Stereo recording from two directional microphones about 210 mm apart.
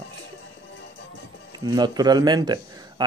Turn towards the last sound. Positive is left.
turn(degrees=-20)  # may be behind; listen again after turning